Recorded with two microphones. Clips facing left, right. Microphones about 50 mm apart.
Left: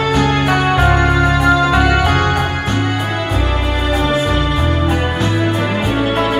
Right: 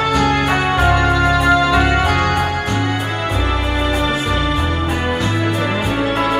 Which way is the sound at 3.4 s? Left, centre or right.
Right.